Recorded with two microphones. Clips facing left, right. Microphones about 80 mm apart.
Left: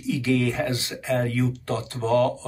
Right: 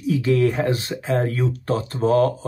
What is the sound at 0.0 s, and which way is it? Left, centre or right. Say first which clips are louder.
Speech: right 4 dB; right.